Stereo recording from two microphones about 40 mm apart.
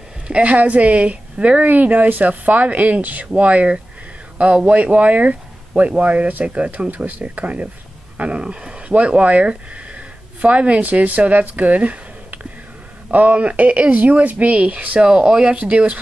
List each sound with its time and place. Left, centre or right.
0.3 s speech: right
15.0 s speech: right